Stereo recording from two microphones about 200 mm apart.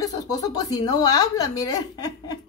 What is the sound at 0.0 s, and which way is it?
Speech, 20° left (ahead or behind).